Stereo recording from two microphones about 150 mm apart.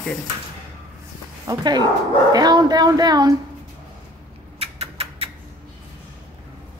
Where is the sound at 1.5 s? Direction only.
30° right (ahead or behind).